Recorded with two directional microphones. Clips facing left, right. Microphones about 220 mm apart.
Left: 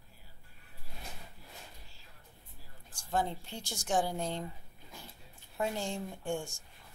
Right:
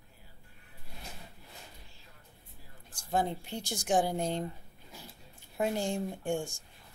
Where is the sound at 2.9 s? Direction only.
15° right (ahead or behind).